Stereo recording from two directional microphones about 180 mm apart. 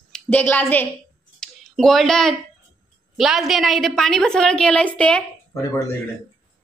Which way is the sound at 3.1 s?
Centre (ahead or behind).